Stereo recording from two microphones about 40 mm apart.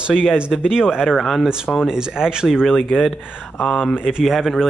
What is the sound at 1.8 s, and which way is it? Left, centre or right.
Speech, centre.